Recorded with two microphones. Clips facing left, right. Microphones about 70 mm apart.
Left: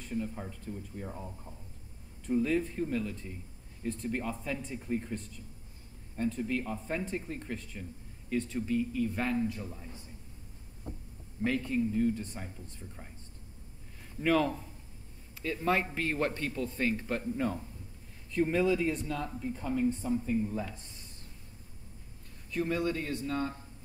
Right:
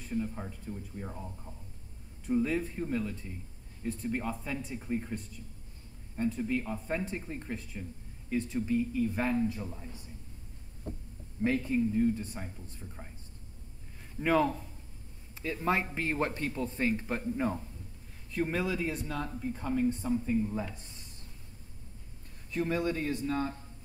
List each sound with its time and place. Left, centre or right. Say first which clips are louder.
0.1 s speech: right 1 dB; centre
2.2 s speech: left 1 dB; centre
11.4 s speech: right 2 dB; centre
14.2 s speech: right 1 dB; centre
22.5 s speech: even; centre